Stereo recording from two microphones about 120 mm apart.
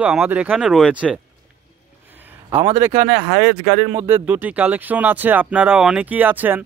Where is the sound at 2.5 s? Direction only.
55° right (ahead or behind).